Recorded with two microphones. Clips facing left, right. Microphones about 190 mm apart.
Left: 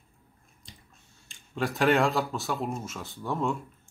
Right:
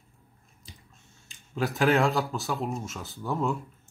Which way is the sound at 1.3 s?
5° right (ahead or behind).